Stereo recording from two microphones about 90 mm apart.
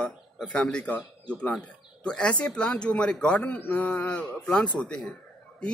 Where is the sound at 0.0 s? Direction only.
10° left (ahead or behind).